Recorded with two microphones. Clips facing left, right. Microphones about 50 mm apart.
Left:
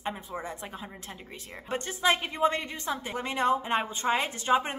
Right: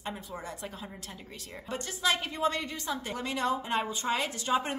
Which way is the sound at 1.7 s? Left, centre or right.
Left.